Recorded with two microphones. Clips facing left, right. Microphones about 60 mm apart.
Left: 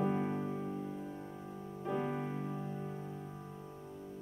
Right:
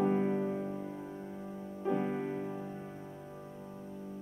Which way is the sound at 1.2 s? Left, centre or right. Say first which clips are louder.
Right 3 dB; centre.